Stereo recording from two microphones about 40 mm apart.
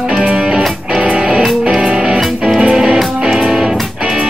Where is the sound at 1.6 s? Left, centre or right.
Right.